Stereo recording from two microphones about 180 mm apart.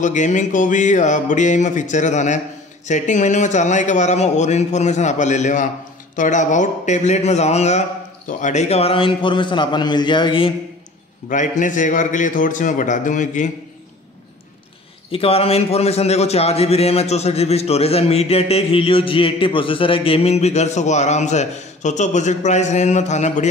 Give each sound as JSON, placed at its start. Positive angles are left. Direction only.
{"t": 0.0, "sound": "a man's voice", "side_deg": 45}
{"t": 11.2, "sound": "speech", "side_deg": 45}
{"t": 15.0, "sound": "a man's voice", "side_deg": 30}